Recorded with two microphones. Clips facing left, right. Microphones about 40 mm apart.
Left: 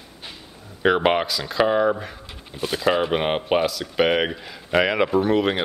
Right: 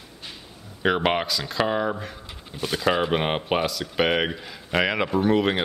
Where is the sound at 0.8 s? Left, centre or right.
Centre.